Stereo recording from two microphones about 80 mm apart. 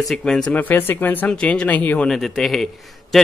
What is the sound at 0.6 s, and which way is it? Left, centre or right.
Speech, left.